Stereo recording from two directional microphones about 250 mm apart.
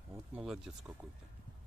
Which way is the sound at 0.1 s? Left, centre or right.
Centre.